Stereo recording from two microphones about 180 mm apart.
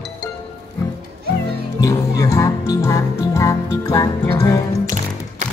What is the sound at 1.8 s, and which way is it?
Music, 20° left (ahead or behind).